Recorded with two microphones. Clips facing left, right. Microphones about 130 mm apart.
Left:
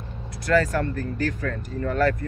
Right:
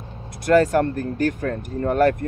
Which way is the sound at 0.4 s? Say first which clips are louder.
Right 5 dB; 50° right (ahead or behind).